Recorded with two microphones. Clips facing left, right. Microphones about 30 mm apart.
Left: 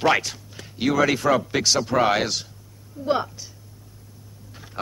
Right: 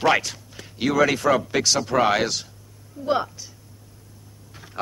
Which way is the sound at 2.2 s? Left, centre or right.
Left.